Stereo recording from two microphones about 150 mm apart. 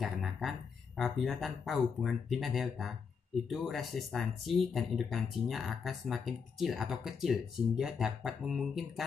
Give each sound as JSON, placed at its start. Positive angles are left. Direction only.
{"t": 0.0, "sound": "speech", "side_deg": 0}